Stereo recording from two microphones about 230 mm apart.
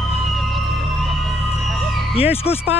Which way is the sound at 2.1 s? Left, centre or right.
Left.